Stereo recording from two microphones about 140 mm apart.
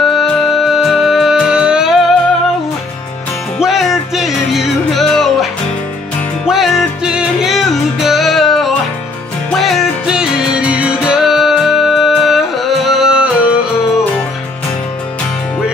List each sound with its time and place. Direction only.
0.0 s music: centre (ahead or behind)
3.5 s music: 5° right (ahead or behind)